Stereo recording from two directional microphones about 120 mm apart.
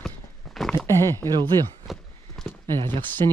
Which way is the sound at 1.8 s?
Centre (ahead or behind).